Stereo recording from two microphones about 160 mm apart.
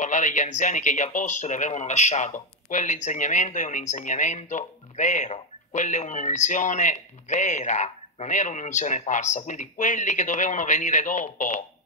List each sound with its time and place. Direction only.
0.0 s speech: 50° left (ahead or behind)